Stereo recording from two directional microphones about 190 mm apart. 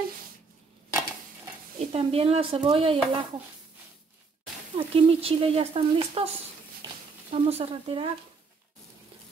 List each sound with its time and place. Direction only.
1.9 s sizzle: 30° right (ahead or behind)
4.7 s speech: 30° right (ahead or behind)
6.8 s a sound: 30° right (ahead or behind)